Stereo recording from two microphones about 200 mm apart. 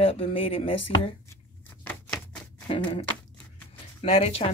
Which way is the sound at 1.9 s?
5° left (ahead or behind).